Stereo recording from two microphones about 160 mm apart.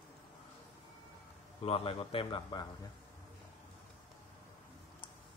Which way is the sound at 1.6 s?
35° left (ahead or behind).